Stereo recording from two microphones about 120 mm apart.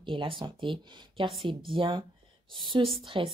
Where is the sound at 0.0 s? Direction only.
45° right (ahead or behind).